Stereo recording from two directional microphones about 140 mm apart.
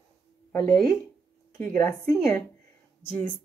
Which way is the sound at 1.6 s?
15° left (ahead or behind).